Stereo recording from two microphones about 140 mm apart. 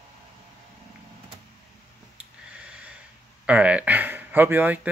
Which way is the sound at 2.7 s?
10° right (ahead or behind).